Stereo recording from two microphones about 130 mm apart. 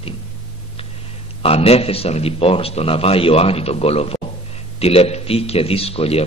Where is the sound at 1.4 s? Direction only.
50° left (ahead or behind).